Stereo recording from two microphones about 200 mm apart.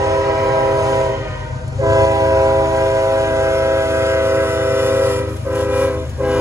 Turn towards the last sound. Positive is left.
turn(degrees=-10)  # may be behind; listen again after turning